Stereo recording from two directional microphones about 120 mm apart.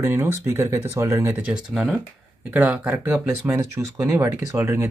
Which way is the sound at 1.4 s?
10° right (ahead or behind).